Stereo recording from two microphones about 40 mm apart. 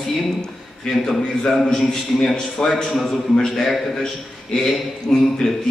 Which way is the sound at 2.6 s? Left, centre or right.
Left.